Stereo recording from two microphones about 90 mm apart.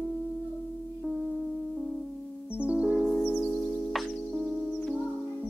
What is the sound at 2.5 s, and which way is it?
Music, 15° right (ahead or behind).